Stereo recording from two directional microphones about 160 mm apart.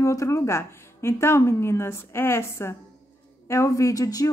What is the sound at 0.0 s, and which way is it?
A woman's voice, 20° left (ahead or behind).